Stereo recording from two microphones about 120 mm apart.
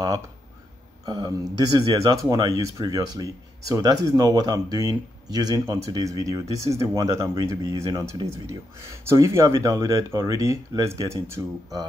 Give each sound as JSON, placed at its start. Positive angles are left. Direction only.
{"t": 1.0, "sound": "speech", "side_deg": -35}